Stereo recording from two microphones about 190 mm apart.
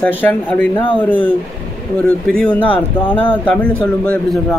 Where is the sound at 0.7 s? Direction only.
25° left (ahead or behind).